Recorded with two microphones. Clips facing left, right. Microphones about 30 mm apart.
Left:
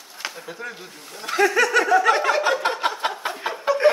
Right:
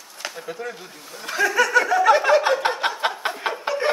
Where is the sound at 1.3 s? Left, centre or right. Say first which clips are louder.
Even; left.